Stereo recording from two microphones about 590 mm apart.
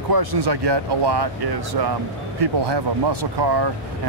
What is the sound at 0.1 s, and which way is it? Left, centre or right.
Speech, right.